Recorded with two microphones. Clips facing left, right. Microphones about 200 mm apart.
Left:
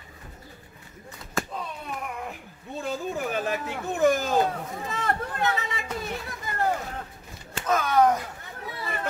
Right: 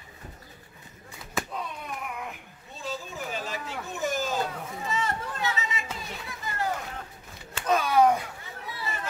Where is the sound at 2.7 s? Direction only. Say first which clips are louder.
Left 6 dB; 55° left (ahead or behind).